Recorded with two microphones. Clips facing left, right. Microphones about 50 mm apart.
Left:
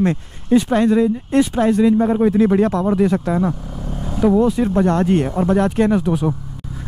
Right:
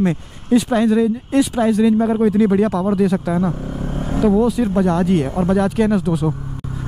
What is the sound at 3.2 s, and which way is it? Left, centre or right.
Speech, centre.